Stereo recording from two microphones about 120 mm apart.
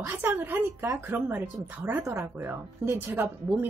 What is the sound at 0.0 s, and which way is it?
Speech, 20° right (ahead or behind).